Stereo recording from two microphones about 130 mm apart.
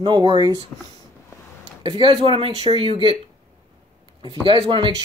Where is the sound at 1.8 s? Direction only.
40° right (ahead or behind).